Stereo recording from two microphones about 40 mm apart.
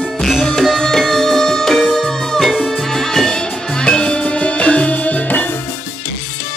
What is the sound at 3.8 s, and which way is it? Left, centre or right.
Music, left.